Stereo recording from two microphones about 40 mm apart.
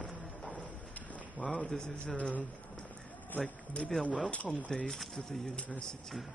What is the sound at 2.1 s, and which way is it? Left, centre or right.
Speech, left.